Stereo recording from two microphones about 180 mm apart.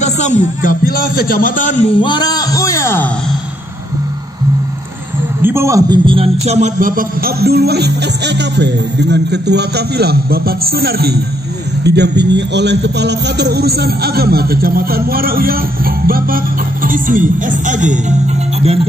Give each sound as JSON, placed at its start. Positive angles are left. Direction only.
{"t": 0.0, "sound": "a man's voice", "side_deg": 45}
{"t": 2.0, "sound": "speech", "side_deg": 25}
{"t": 5.4, "sound": "a man's voice", "side_deg": -15}